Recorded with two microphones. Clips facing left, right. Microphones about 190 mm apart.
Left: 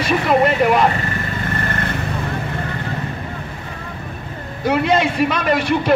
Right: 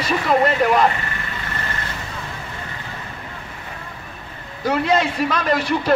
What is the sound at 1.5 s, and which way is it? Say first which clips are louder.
Vehicle: left 7 dB; 55° left (ahead or behind).